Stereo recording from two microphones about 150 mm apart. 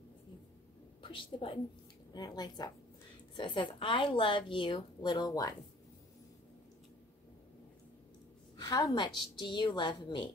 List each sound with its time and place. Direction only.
1.0 s a woman's voice: 35° left (ahead or behind)
8.6 s a woman's voice: 25° left (ahead or behind)